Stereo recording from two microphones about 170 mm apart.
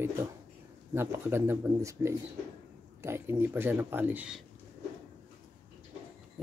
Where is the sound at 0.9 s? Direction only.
15° right (ahead or behind).